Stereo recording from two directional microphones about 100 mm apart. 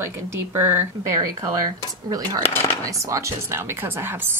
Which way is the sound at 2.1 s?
40° right (ahead or behind).